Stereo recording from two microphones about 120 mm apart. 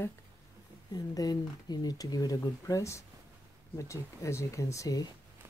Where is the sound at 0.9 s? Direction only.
35° left (ahead or behind).